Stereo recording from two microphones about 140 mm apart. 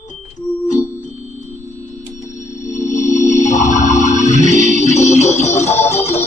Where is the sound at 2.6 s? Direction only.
60° left (ahead or behind).